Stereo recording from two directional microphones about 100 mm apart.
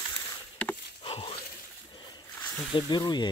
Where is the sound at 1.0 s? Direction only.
65° left (ahead or behind).